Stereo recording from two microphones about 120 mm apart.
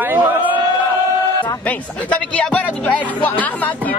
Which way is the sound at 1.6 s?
10° left (ahead or behind).